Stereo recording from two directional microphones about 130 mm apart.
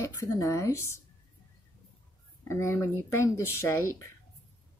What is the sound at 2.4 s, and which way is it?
A woman's voice, 20° left (ahead or behind).